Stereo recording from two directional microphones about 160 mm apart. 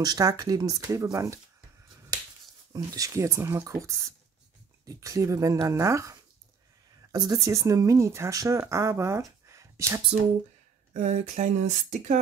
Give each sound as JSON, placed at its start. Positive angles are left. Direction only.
{"t": 0.0, "sound": "speech", "side_deg": -25}
{"t": 2.7, "sound": "speech", "side_deg": -20}
{"t": 10.9, "sound": "speech", "side_deg": -45}